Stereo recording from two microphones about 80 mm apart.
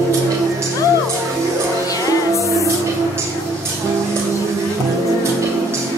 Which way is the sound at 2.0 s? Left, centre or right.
Left.